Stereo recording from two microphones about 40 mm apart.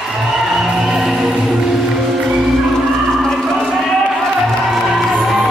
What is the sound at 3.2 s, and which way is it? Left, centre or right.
Music, centre.